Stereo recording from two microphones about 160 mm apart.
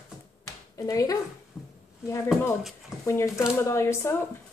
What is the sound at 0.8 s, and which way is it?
Speech, 20° left (ahead or behind).